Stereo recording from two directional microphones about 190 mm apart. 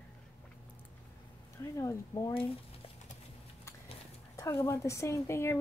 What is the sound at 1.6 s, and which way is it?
Speech, 15° left (ahead or behind).